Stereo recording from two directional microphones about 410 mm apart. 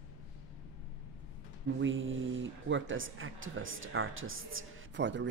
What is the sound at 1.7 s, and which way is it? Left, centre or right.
Speech, right.